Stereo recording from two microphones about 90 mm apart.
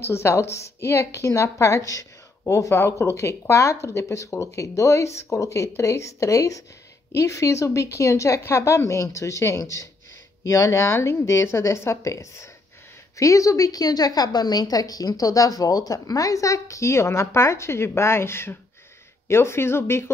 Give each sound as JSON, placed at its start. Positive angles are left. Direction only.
{"t": 0.0, "sound": "a woman's voice", "side_deg": 30}